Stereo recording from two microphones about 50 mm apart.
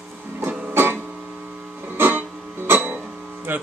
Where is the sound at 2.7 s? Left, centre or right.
Right.